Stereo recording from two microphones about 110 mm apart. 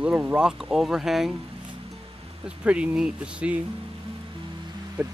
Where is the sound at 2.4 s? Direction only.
10° right (ahead or behind).